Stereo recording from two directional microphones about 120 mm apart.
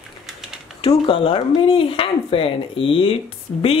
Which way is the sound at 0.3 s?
5° right (ahead or behind).